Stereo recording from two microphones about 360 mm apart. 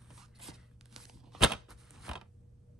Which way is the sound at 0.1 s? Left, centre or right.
Centre.